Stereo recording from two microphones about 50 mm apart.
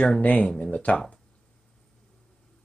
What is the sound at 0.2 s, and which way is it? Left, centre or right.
Speech, left.